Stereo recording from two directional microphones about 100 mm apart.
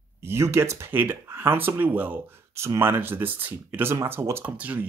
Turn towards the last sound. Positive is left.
turn(degrees=-15)  # may be behind; listen again after turning